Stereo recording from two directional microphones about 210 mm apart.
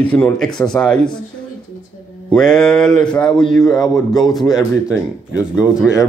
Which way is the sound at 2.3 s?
5° left (ahead or behind).